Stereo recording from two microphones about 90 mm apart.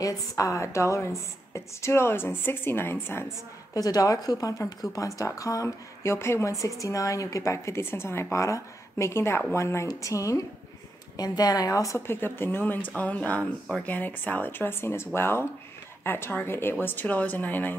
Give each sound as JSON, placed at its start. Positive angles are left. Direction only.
{"t": 0.0, "sound": "a woman's voice", "side_deg": 35}
{"t": 3.7, "sound": "a woman's voice", "side_deg": 40}
{"t": 12.1, "sound": "speech", "side_deg": 25}